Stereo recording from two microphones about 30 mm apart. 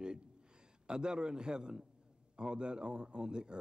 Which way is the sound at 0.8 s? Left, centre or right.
Right.